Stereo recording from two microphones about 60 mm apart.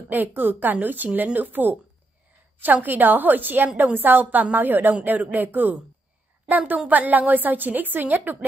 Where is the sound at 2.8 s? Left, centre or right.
Right.